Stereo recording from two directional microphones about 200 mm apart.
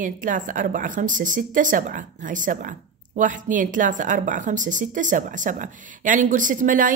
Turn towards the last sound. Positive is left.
turn(degrees=-40)  # may be behind; listen again after turning